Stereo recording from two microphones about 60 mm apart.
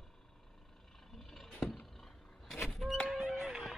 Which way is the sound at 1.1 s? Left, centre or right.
Centre.